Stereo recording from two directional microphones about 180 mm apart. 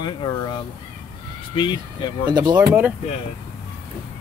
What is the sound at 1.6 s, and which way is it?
Speech, 25° left (ahead or behind).